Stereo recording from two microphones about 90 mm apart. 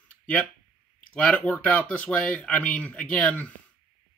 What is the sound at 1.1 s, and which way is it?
Speech, 15° left (ahead or behind).